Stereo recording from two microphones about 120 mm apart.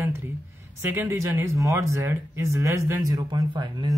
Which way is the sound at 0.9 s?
25° right (ahead or behind).